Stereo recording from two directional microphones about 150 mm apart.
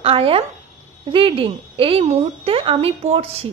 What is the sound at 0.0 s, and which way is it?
A woman's voice, 40° right (ahead or behind).